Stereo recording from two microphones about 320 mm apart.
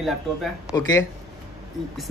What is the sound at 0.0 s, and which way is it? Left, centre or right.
Speech, centre.